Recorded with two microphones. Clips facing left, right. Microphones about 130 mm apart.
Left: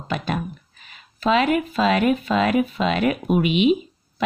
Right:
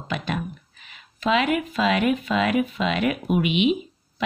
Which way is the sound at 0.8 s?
40° left (ahead or behind).